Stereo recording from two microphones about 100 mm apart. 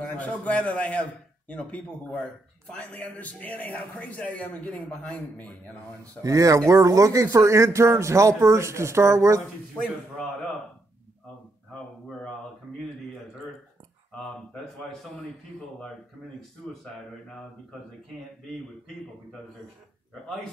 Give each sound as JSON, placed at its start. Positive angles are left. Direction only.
{"t": 0.0, "sound": "a man's voice", "side_deg": 15}
{"t": 6.2, "sound": "speech", "side_deg": -35}
{"t": 14.2, "sound": "speech", "side_deg": 5}